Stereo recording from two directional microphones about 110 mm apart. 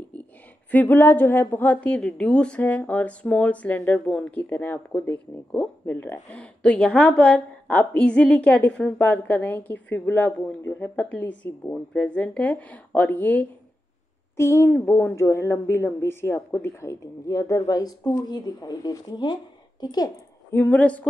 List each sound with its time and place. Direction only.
0.7 s a woman's voice: 15° left (ahead or behind); by 20.1 s 40° left (ahead or behind)
20.5 s a woman's voice: 15° left (ahead or behind)